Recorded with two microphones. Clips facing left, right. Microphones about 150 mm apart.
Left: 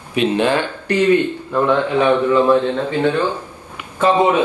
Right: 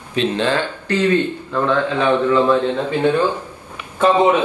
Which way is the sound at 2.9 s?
15° right (ahead or behind).